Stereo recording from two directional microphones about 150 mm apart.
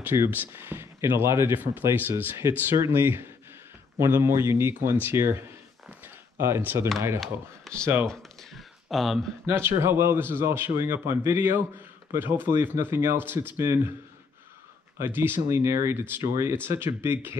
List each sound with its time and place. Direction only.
0.0 s speech: 15° right (ahead or behind)
5.9 s a sound: 15° right (ahead or behind)
7.2 s speech: centre (ahead or behind)
7.8 s speech: 15° right (ahead or behind)
8.1 s a sound: centre (ahead or behind)
9.5 s speech: 15° right (ahead or behind)
15.0 s speech: 15° right (ahead or behind)